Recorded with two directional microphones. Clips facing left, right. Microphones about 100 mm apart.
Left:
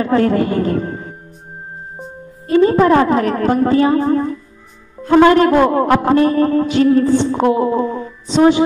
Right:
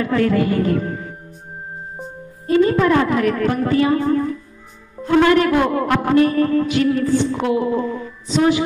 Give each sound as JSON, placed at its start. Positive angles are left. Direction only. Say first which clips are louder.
{"t": 0.0, "sound": "speech", "louder": "left 3 dB", "side_deg": 35}
{"t": 2.6, "sound": "a man's voice", "louder": "left 5 dB", "side_deg": 35}